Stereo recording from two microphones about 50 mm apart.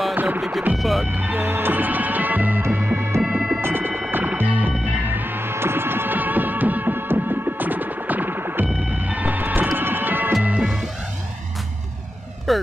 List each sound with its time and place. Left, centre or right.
0.1 s music: right
0.4 s music: centre
0.7 s speech: centre
1.0 s speech: right
2.6 s music: right
3.3 s music: centre
3.6 s music: right
10.6 s music: centre
12.5 s emergency vehicle: centre